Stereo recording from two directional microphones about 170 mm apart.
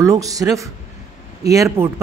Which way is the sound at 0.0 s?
20° right (ahead or behind).